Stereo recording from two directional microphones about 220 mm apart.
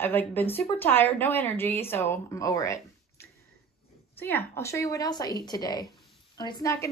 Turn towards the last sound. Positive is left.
turn(degrees=15)  # may be behind; listen again after turning